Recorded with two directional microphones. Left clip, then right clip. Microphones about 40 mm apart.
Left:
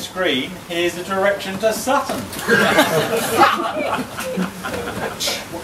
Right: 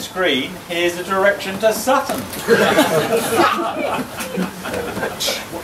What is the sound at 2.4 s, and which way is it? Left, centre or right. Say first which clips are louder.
Speech: right 1 dB; left.